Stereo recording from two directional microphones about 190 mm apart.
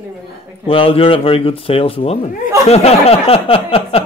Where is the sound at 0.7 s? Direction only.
30° left (ahead or behind).